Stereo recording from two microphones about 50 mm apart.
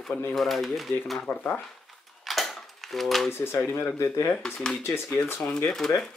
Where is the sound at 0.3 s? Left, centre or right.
Centre.